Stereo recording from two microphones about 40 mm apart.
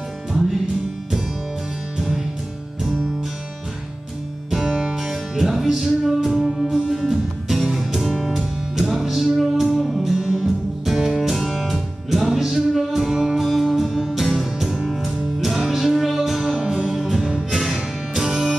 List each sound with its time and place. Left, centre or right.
2.0 s music: centre
4.5 s music: centre
16.5 s music: centre
17.0 s music: centre
17.3 s music: centre